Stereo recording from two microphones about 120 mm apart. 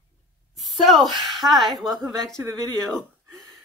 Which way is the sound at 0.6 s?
Centre (ahead or behind).